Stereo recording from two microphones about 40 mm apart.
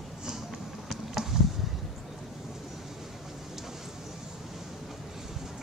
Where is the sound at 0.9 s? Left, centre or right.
Centre.